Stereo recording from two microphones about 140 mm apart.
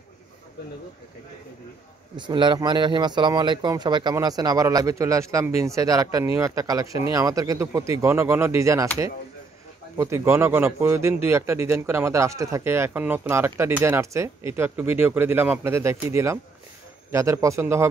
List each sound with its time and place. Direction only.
2.1 s speech: 35° right (ahead or behind)
9.9 s speech: 20° right (ahead or behind)